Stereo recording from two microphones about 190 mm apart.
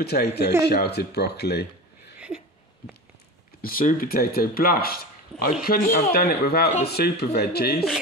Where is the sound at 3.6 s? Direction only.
50° left (ahead or behind).